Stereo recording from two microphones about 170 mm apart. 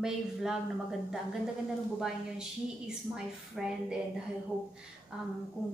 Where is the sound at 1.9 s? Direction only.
5° right (ahead or behind).